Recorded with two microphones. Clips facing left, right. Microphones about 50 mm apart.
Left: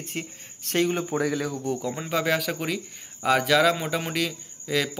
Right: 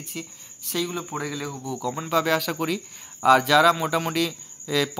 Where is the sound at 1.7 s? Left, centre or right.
Centre.